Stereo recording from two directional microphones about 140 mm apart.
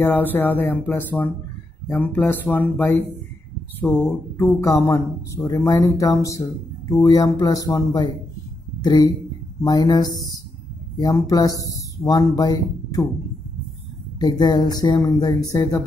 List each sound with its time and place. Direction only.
0.0 s speech: 15° left (ahead or behind)
3.8 s speech: 15° left (ahead or behind)
14.2 s speech: 30° left (ahead or behind)